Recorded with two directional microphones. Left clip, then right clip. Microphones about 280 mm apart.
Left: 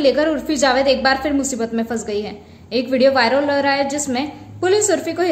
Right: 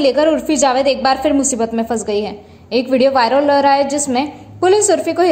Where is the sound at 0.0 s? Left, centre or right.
Centre.